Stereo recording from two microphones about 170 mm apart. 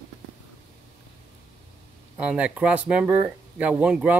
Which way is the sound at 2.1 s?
5° right (ahead or behind).